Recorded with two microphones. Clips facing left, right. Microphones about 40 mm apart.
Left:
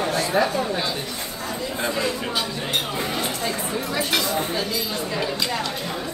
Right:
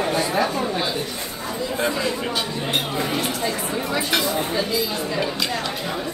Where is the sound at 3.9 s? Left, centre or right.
Centre.